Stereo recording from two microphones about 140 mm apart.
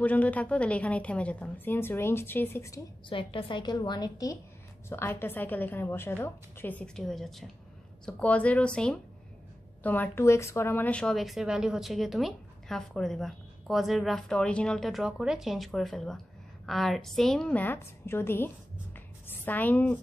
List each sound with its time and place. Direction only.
0.0 s a woman's voice: 10° left (ahead or behind)
3.1 s a woman's voice: 40° left (ahead or behind); by 18.5 s 15° left (ahead or behind)
18.9 s a sound: 10° left (ahead or behind)